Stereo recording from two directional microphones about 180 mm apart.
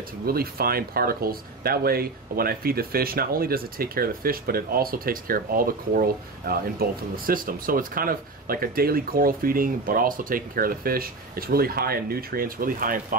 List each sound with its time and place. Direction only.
0.3 s speech: 55° right (ahead or behind)